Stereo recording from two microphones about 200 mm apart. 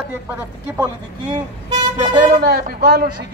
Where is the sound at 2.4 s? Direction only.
55° right (ahead or behind).